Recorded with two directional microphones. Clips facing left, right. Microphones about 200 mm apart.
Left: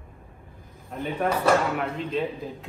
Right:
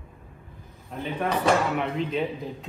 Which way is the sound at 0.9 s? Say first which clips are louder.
Left 1 dB; centre (ahead or behind).